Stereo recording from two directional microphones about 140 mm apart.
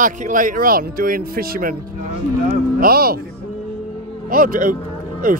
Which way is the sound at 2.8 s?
90° right.